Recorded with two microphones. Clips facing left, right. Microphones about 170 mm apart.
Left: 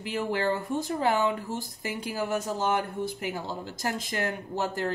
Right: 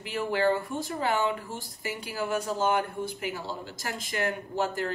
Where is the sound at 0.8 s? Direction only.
50° left (ahead or behind).